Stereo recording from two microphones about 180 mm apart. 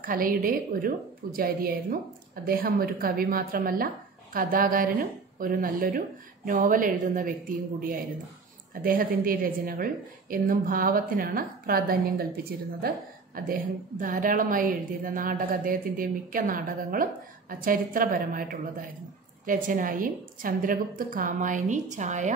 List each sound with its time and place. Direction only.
0.0 s a woman's voice: 50° right (ahead or behind)